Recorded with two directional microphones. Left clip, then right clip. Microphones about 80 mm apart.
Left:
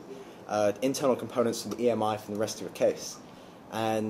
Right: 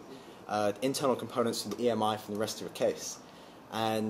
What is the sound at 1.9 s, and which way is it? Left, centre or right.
Speech, centre.